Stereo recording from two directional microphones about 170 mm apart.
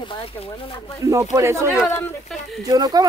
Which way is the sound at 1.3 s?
15° right (ahead or behind).